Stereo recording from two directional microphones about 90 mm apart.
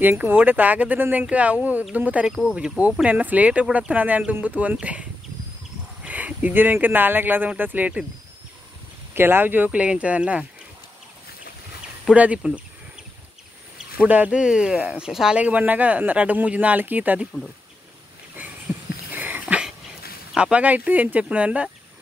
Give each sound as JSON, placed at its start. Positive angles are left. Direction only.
{"t": 0.0, "sound": "speech", "side_deg": -20}
{"t": 6.0, "sound": "speech", "side_deg": -15}
{"t": 9.1, "sound": "speech", "side_deg": -25}
{"t": 12.0, "sound": "speech", "side_deg": -10}
{"t": 13.9, "sound": "speech", "side_deg": -15}
{"t": 18.4, "sound": "a sound", "side_deg": -20}
{"t": 20.3, "sound": "speech", "side_deg": -15}